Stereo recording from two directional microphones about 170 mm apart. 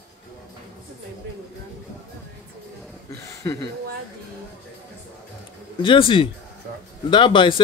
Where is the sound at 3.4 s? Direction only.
20° left (ahead or behind).